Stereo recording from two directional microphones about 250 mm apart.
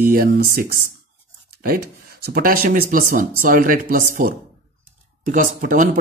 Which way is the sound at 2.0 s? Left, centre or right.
Right.